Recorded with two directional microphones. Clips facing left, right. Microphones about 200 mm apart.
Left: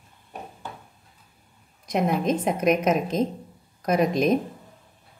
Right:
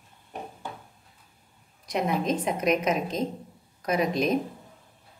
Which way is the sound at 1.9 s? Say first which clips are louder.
Left 3 dB; 50° left (ahead or behind).